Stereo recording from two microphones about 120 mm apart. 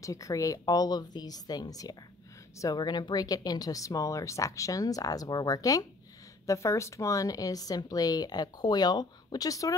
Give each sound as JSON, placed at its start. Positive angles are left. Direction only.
{"t": 0.0, "sound": "a woman's voice", "side_deg": 30}